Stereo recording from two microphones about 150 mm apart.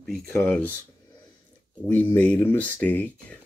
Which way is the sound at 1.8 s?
15° left (ahead or behind).